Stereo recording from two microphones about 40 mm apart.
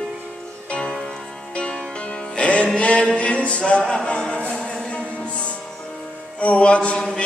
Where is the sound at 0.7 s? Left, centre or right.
Left.